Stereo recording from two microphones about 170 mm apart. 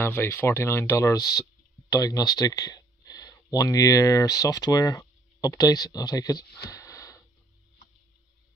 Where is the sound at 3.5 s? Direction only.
20° left (ahead or behind).